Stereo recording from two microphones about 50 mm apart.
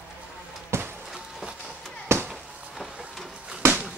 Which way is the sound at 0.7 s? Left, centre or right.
Right.